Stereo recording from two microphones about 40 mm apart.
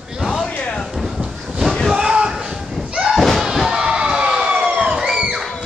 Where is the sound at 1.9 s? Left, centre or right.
Centre.